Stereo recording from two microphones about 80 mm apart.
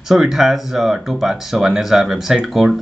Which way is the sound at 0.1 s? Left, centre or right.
Centre.